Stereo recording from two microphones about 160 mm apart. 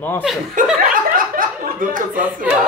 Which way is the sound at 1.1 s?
60° right (ahead or behind).